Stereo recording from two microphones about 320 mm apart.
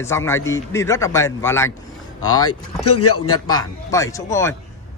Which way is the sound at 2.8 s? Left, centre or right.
Left.